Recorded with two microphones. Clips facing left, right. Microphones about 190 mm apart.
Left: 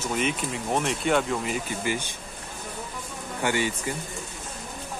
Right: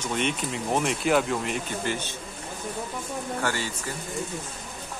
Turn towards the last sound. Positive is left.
turn(degrees=15)  # may be behind; listen again after turning